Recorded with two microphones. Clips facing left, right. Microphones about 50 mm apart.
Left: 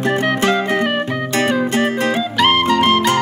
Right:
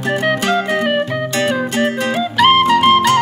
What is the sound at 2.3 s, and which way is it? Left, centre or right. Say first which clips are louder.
Music: right 4 dB; centre.